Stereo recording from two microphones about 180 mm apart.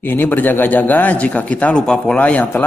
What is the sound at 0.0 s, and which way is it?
A man's voice, 10° left (ahead or behind).